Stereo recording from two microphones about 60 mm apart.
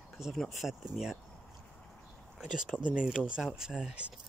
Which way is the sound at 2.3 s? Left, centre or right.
Centre.